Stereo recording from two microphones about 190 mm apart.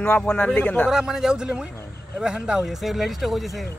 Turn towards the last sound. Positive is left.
turn(degrees=0)  # may be behind; listen again after turning